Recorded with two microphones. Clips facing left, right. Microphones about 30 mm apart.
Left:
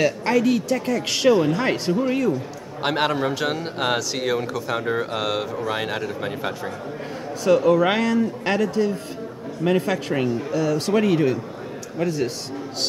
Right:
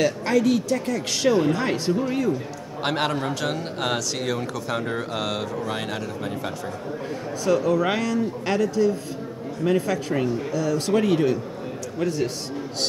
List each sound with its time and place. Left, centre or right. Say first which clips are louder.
0.0 s speech: left 1 dB; centre
1.3 s speech: left 1 dB; centre
2.0 s speech: left 2 dB; left
2.8 s speech: left 3 dB; centre
10.9 s speech: even; centre